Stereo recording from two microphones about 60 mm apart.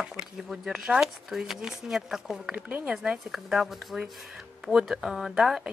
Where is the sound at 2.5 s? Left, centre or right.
Right.